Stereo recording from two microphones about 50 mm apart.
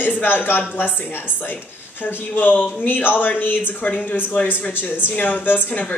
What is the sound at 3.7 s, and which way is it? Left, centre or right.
A woman's voice, left.